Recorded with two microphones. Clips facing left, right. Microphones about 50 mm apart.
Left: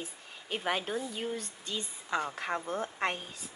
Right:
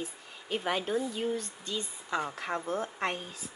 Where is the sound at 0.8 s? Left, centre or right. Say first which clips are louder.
Right 4 dB; centre.